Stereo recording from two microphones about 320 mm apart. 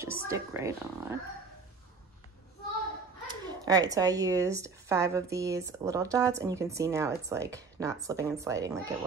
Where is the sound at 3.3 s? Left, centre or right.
Centre.